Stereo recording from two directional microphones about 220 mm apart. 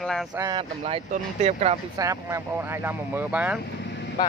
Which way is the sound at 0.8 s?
30° right (ahead or behind).